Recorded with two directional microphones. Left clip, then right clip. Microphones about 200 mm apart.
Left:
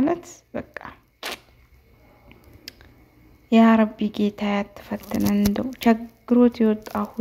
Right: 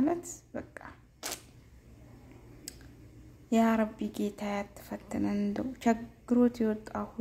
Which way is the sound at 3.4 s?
20° left (ahead or behind).